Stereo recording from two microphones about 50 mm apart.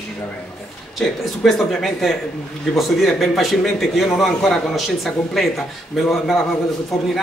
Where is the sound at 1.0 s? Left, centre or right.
Centre.